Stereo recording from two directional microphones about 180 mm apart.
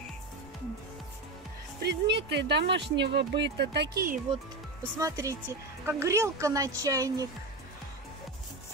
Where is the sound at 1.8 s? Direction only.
70° right (ahead or behind).